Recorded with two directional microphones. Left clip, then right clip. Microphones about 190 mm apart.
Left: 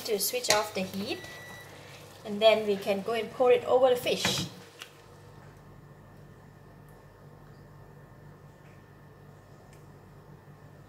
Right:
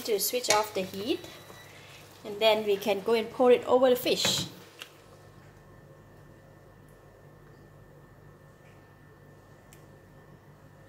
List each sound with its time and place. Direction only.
0.0 s a woman's voice: 40° right (ahead or behind)
2.3 s a woman's voice: 45° right (ahead or behind)